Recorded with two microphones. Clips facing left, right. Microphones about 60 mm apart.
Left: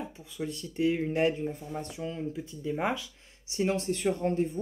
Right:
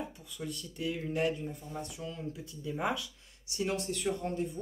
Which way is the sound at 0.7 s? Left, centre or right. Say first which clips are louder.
Left 7 dB; left.